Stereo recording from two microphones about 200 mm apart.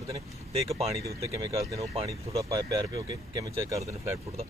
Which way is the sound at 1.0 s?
15° right (ahead or behind).